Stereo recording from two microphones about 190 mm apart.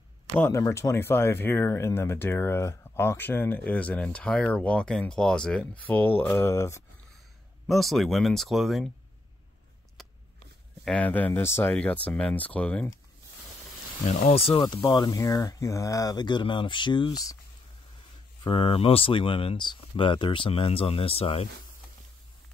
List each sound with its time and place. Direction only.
0.3 s speech: 15° left (ahead or behind)
7.6 s speech: centre (ahead or behind)
10.0 s a sound: centre (ahead or behind)
10.9 s speech: 10° left (ahead or behind)
14.5 s speech: 20° left (ahead or behind)
18.4 s speech: 25° left (ahead or behind)